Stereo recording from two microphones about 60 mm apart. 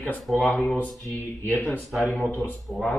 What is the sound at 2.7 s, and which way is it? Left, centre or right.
Mantra, centre.